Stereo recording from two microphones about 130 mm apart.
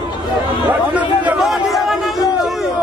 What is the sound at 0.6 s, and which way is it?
Chatter, 10° right (ahead or behind).